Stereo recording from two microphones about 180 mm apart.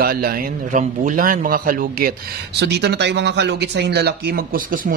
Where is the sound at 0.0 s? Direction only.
55° right (ahead or behind).